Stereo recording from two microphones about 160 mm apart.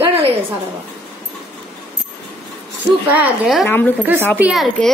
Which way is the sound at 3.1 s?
5° right (ahead or behind).